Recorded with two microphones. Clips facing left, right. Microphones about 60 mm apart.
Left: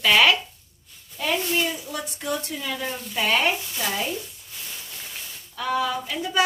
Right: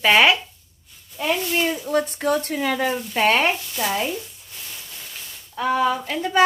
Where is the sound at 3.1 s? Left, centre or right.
Right.